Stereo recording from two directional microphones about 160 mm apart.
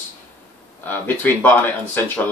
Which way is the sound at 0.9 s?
10° left (ahead or behind).